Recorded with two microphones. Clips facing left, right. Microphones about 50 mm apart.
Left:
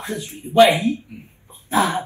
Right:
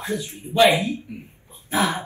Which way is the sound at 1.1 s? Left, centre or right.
Right.